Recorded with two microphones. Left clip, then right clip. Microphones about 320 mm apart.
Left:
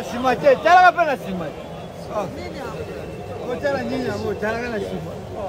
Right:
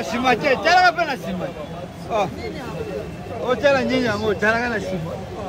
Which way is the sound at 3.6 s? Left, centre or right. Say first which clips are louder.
Right 6 dB; right.